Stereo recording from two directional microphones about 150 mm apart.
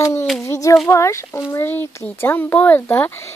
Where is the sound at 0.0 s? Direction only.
15° left (ahead or behind).